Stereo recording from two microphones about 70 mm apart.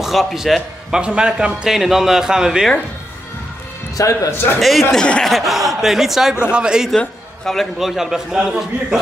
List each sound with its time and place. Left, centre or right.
0.0 s a man's voice: centre
3.9 s speech: left
4.6 s a man's voice: centre
4.9 s speech: centre
5.2 s a man's voice: centre
7.0 s a sound: centre
7.8 s a man's voice: centre